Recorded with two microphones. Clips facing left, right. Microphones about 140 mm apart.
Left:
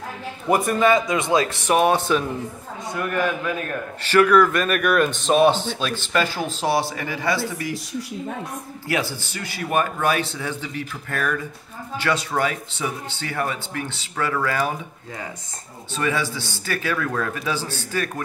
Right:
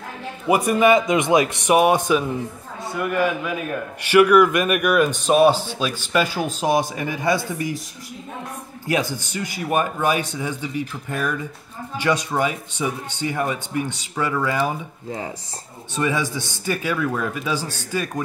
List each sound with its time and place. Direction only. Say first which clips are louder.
0.7 s a man's voice: right 4 dB; 15° right (ahead or behind)
8.8 s a man's voice: right 3 dB; 20° right (ahead or behind)
14.6 s a man's voice: right 1 dB; 25° right (ahead or behind)